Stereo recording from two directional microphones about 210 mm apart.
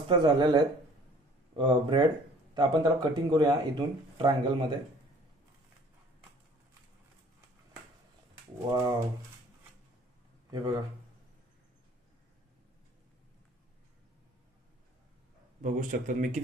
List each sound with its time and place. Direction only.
0.1 s speech: 20° right (ahead or behind)
8.6 s speech: 15° right (ahead or behind)
10.5 s speech: 20° right (ahead or behind)
15.6 s a man's voice: 40° right (ahead or behind)